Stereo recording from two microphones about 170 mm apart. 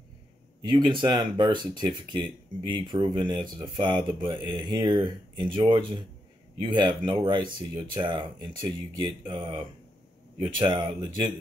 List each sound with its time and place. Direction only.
0.7 s speech: 30° right (ahead or behind)